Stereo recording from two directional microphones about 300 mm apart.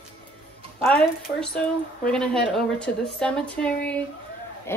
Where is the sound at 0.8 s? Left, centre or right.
Centre.